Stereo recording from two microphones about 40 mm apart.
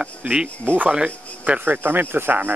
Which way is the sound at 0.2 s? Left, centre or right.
Right.